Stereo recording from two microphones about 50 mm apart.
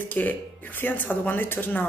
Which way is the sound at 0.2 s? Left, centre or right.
Left.